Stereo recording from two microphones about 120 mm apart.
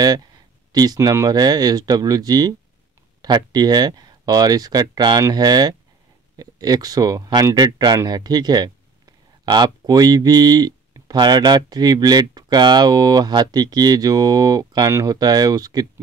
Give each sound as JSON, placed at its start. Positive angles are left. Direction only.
{"t": 0.0, "sound": "speech", "side_deg": -35}